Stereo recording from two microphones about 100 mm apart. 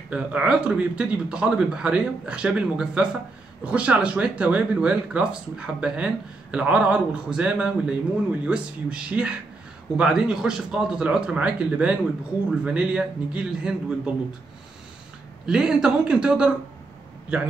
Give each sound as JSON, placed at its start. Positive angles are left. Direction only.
{"t": 0.1, "sound": "speech", "side_deg": -10}
{"t": 15.4, "sound": "speech", "side_deg": -5}